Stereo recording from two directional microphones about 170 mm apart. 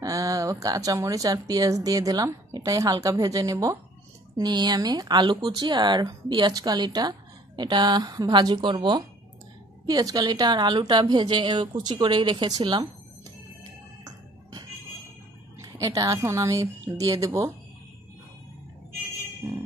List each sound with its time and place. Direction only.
0.0 s speech: 20° right (ahead or behind)
15.6 s a woman's voice: 20° right (ahead or behind)